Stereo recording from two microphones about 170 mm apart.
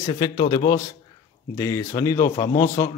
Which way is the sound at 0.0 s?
25° left (ahead or behind).